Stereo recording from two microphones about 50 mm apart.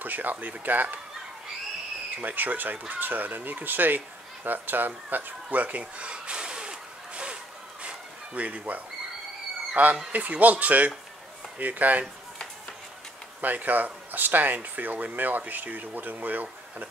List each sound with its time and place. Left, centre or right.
0.0 s speech: right
2.2 s speech: right
4.5 s a sound: right
9.8 s speech: right
13.4 s speech: right